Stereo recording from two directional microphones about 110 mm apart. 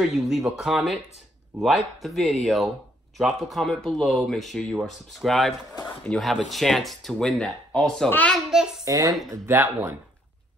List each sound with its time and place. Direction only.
0.1 s a child's voice: 5° right (ahead or behind); by 8.4 s 15° left (ahead or behind)
8.8 s speech: 35° right (ahead or behind)
9.3 s speech: 20° right (ahead or behind)